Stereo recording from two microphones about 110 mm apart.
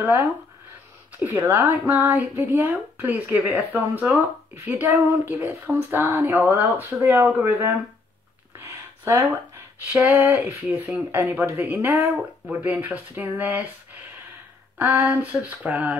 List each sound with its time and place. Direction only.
0.0 s speech: 15° right (ahead or behind)
8.5 s a sound: 25° right (ahead or behind)
10.0 s speech: 20° right (ahead or behind)
14.8 s speech: 15° right (ahead or behind)